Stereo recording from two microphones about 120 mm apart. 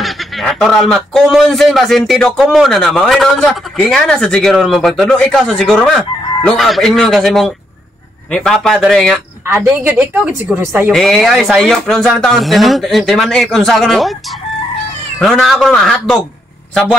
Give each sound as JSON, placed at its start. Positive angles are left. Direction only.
{"t": 0.0, "sound": "a man's voice", "side_deg": 0}
{"t": 9.7, "sound": "a woman's voice", "side_deg": -15}
{"t": 10.9, "sound": "a man's voice", "side_deg": 0}
{"t": 15.1, "sound": "a man's voice", "side_deg": 5}